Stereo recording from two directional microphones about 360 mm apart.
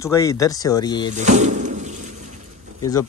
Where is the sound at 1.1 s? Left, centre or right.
Centre.